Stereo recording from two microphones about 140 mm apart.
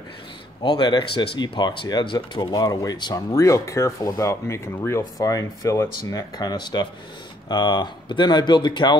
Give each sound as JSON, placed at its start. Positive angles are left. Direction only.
{"t": 0.7, "sound": "speech", "side_deg": 35}